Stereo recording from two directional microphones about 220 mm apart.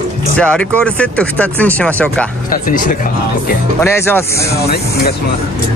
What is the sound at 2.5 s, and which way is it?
Speech, 40° left (ahead or behind).